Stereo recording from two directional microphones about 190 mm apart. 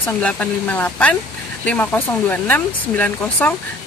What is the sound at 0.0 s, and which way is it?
Speech, 10° left (ahead or behind).